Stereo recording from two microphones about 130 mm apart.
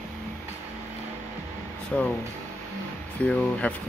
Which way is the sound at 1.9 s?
10° left (ahead or behind).